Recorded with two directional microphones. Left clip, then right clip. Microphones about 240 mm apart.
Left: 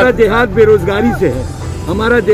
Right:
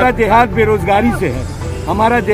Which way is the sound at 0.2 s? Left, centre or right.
Centre.